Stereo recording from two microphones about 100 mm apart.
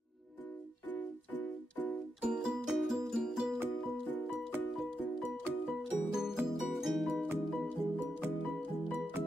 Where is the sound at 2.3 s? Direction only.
5° right (ahead or behind).